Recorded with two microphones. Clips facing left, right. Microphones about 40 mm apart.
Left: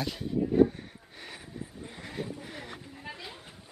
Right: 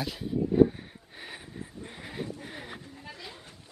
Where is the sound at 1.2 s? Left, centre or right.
Centre.